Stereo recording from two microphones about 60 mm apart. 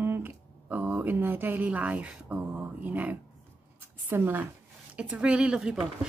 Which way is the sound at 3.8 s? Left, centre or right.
Right.